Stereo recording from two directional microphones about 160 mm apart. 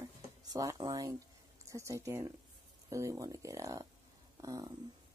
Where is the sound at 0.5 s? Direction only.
25° right (ahead or behind).